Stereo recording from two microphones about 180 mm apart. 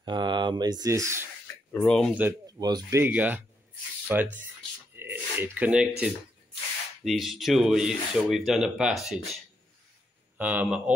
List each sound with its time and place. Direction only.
0.0 s speech: 25° right (ahead or behind)
1.7 s speech: 5° left (ahead or behind)
2.6 s speech: 20° right (ahead or behind)